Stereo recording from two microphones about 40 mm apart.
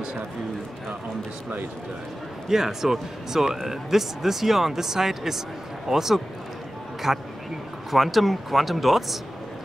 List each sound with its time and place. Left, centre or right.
2.4 s speech: centre